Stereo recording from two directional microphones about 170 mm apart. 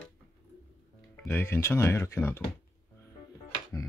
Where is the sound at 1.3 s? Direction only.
15° left (ahead or behind).